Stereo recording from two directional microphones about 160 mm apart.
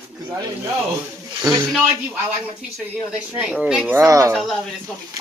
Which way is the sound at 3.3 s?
5° right (ahead or behind).